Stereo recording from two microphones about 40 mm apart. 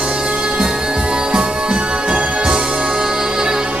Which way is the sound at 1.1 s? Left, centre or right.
Right.